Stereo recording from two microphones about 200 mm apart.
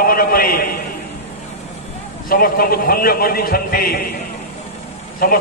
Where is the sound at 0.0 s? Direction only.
45° left (ahead or behind).